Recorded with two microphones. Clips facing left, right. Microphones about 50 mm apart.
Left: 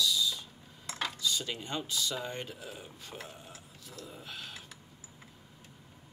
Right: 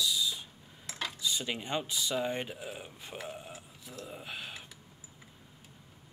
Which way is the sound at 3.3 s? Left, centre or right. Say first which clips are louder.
Right 5 dB; centre.